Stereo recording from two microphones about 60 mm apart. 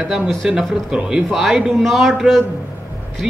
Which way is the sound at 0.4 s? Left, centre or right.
Centre.